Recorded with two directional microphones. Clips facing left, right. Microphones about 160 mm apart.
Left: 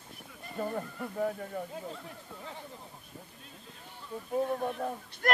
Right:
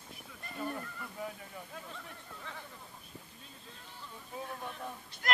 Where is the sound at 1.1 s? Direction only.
50° left (ahead or behind).